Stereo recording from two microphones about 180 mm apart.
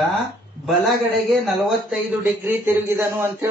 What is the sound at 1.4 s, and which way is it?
A man's voice, centre (ahead or behind).